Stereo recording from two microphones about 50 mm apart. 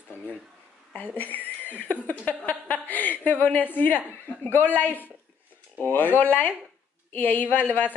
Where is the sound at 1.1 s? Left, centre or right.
Left.